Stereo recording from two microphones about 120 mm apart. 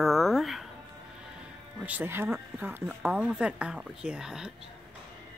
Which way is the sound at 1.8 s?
15° right (ahead or behind).